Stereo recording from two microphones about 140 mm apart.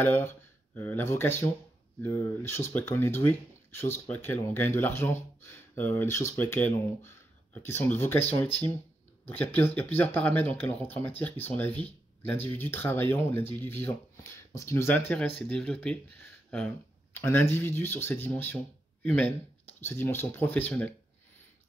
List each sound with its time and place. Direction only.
0.0 s speech: 15° left (ahead or behind)
9.3 s speech: 10° left (ahead or behind)